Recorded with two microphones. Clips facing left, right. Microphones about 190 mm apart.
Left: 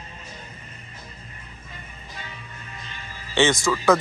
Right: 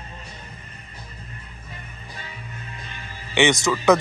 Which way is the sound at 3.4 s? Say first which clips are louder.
Right 1 dB; 20° right (ahead or behind).